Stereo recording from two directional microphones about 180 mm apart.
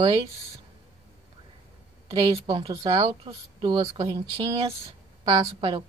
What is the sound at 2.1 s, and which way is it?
Speech, 30° right (ahead or behind).